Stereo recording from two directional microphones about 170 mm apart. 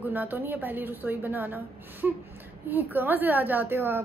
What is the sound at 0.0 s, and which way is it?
A woman's voice, 10° right (ahead or behind).